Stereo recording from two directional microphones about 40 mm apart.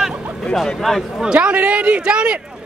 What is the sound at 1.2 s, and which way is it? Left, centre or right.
Speech, right.